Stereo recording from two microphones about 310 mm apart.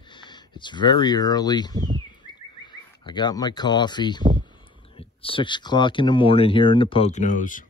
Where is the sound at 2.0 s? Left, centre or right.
Centre.